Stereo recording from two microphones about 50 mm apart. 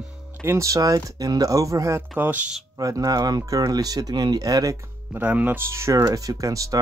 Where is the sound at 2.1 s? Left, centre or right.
Right.